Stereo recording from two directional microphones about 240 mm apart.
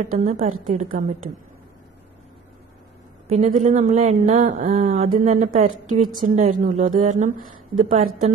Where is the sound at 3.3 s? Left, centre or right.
Right.